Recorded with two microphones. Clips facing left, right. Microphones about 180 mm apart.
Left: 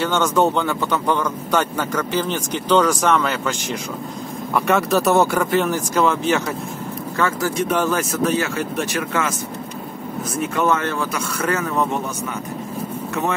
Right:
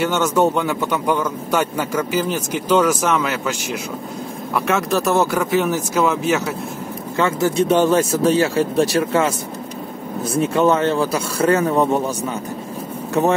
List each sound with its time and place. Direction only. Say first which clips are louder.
0.0 s speech: right 1 dB; 10° right (ahead or behind)
4.6 s speech: left 1 dB; centre (ahead or behind)
7.2 s speech: right 4 dB; 25° right (ahead or behind)
10.3 s speech: right 4 dB; 30° right (ahead or behind)